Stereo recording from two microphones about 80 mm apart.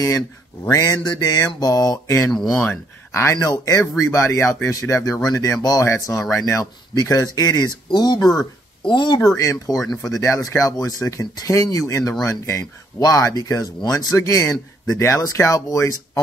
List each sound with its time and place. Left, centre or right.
0.7 s speech: left
3.3 s speech: left
5.2 s speech: left
8.8 s speech: left
9.4 s speech: left
14.1 s speech: left